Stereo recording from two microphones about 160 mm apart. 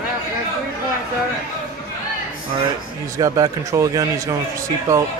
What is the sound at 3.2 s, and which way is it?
Speech, 20° right (ahead or behind).